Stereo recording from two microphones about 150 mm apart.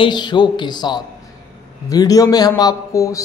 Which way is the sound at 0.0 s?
30° left (ahead or behind).